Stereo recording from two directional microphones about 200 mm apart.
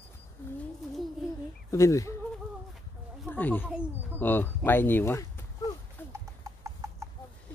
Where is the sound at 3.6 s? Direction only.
5° right (ahead or behind).